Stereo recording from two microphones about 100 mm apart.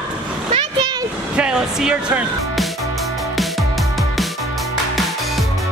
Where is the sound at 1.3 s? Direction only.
10° right (ahead or behind).